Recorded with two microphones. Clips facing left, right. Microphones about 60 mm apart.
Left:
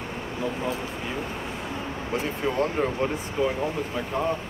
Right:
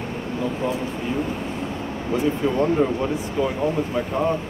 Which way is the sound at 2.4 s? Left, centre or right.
Centre.